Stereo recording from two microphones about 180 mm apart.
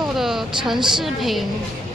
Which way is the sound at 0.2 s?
Centre (ahead or behind).